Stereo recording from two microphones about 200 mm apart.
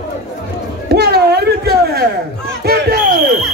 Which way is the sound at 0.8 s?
55° right (ahead or behind).